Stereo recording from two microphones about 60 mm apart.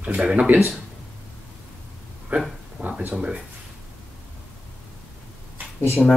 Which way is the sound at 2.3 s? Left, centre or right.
Right.